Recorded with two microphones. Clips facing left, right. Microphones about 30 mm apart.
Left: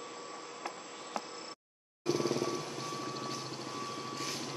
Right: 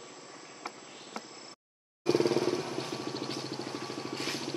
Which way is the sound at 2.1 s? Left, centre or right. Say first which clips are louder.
Right 5 dB; right.